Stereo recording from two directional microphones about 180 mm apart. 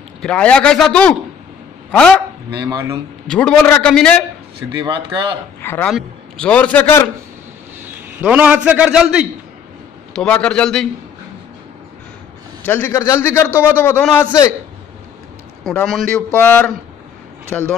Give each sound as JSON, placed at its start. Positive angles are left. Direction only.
{"t": 0.2, "sound": "a man's voice", "side_deg": 5}
{"t": 2.5, "sound": "speech", "side_deg": -20}
{"t": 3.3, "sound": "a man's voice", "side_deg": 5}
{"t": 4.7, "sound": "speech", "side_deg": -25}
{"t": 5.6, "sound": "a man's voice", "side_deg": 10}
{"t": 8.2, "sound": "a man's voice", "side_deg": -10}
{"t": 10.1, "sound": "a man's voice", "side_deg": 5}
{"t": 12.6, "sound": "a man's voice", "side_deg": 10}
{"t": 15.7, "sound": "a man's voice", "side_deg": 5}